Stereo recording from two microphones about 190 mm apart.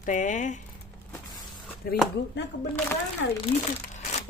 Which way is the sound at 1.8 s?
55° left (ahead or behind).